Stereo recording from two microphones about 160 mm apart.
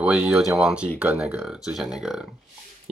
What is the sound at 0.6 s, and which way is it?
Speech, 5° right (ahead or behind).